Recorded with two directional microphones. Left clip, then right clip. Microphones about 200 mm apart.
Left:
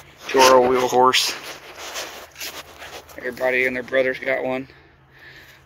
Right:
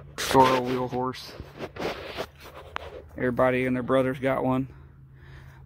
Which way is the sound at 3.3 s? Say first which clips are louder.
Left 4 dB; 30° right (ahead or behind).